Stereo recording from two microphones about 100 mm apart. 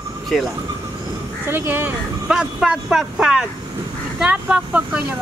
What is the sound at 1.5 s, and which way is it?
Speech, 20° right (ahead or behind).